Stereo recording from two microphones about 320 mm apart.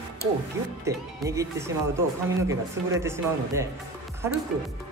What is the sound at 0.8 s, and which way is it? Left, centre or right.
Speech, centre.